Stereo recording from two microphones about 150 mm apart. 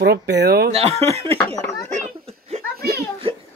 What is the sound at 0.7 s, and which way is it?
Speech, 45° right (ahead or behind).